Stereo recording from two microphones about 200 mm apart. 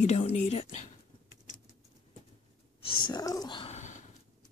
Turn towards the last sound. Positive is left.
turn(degrees=35)  # may be behind; listen again after turning